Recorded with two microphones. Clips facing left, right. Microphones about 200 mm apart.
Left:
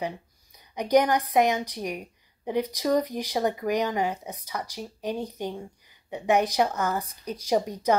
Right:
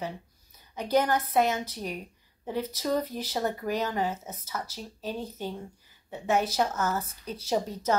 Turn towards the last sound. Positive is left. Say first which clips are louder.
# left 4 dB
turn(degrees=15)  # may be behind; listen again after turning